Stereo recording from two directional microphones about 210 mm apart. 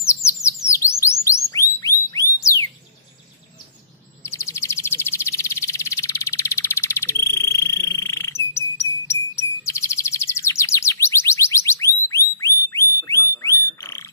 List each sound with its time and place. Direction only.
0.0 s bird: 15° left (ahead or behind)
4.2 s bird: 15° left (ahead or behind)
7.9 s frog: 15° left (ahead or behind)
9.3 s chirp: 15° left (ahead or behind)